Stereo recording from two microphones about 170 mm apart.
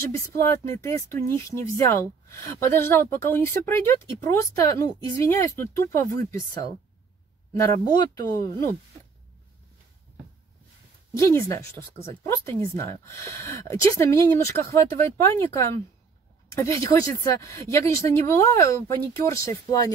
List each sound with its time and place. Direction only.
0.0 s speech: 15° left (ahead or behind)
11.1 s speech: 15° left (ahead or behind)